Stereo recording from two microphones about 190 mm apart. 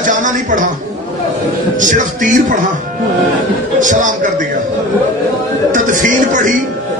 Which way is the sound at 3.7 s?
45° right (ahead or behind).